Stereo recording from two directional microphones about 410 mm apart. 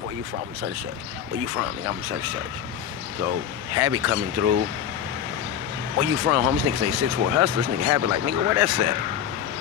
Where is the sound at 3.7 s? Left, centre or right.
Right.